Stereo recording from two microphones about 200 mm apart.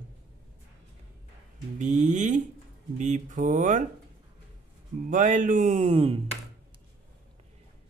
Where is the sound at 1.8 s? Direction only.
40° right (ahead or behind).